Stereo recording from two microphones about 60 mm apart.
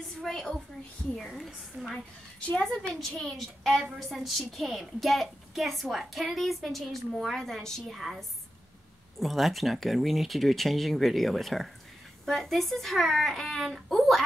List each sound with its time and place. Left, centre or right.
0.2 s a woman's voice: centre
9.2 s a woman's voice: centre